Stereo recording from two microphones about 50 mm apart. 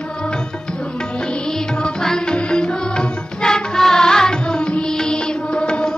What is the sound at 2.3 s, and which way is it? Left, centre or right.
Music, centre.